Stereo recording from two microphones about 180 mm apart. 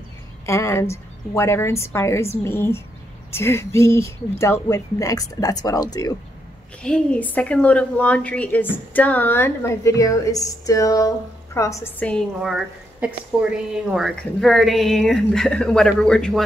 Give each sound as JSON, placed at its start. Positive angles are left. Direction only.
{"t": 0.5, "sound": "a woman's voice", "side_deg": 15}
{"t": 6.8, "sound": "a woman's voice", "side_deg": 5}
{"t": 12.4, "sound": "a woman's voice", "side_deg": -5}